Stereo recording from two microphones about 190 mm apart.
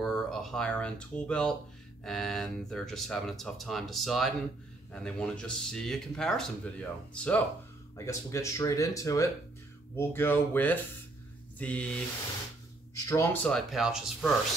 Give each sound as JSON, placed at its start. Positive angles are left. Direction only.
{"t": 0.0, "sound": "speech", "side_deg": 0}
{"t": 11.5, "sound": "a sound", "side_deg": 5}
{"t": 13.0, "sound": "speech", "side_deg": 15}